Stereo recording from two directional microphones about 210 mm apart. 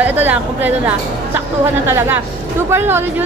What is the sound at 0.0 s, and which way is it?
A woman's voice, 10° right (ahead or behind).